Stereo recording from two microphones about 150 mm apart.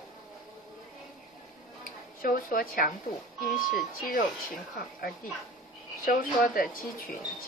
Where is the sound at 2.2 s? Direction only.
70° left (ahead or behind).